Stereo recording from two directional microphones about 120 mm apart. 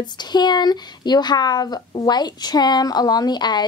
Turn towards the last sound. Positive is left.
turn(degrees=35)  # may be behind; listen again after turning